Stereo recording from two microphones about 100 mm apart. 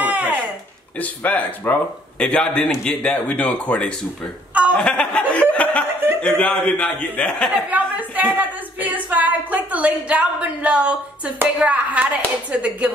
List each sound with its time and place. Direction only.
0.0 s a sound: 15° right (ahead or behind)
0.9 s speech: 15° left (ahead or behind)
7.7 s a woman's voice: 15° right (ahead or behind)